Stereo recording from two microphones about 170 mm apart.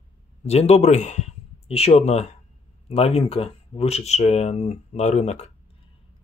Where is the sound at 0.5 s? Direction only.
40° left (ahead or behind).